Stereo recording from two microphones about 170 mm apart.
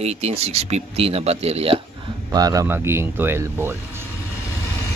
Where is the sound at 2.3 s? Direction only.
20° right (ahead or behind).